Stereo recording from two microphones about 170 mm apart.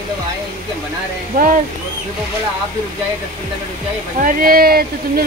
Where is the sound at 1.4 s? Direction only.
55° right (ahead or behind).